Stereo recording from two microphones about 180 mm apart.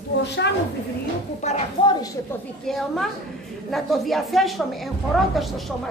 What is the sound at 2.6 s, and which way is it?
A woman's voice, centre (ahead or behind).